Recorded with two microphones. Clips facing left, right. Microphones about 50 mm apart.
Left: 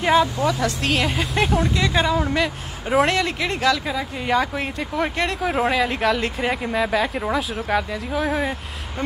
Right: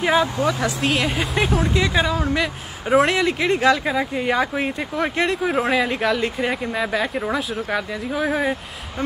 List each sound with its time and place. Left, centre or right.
0.0 s speech: centre
0.7 s speech: centre
3.3 s speech: right
4.1 s speech: centre